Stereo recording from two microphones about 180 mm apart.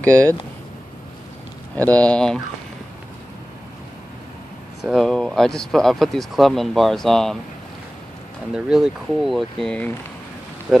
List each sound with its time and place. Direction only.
0.1 s speech: 20° right (ahead or behind)
2.0 s speech: 5° left (ahead or behind)
4.8 s speech: 5° left (ahead or behind)
8.5 s speech: 5° right (ahead or behind)
10.7 s speech: 5° right (ahead or behind)